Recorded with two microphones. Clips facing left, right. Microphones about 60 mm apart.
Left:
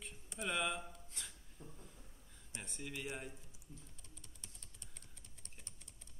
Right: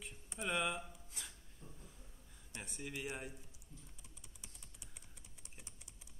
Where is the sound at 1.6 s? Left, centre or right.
Left.